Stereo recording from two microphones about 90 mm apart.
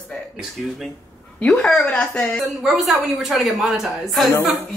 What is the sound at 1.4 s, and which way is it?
Speech, 15° left (ahead or behind).